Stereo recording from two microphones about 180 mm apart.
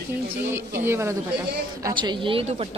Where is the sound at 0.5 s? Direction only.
15° right (ahead or behind).